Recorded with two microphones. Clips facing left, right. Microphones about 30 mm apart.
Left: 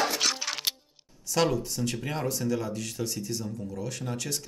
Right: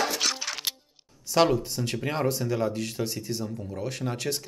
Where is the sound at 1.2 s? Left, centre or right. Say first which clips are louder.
Right 4 dB; right.